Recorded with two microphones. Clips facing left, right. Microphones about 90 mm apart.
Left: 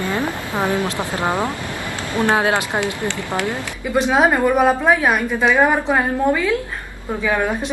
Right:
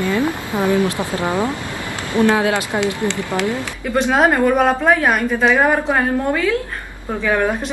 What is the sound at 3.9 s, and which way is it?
A woman's voice, 5° left (ahead or behind).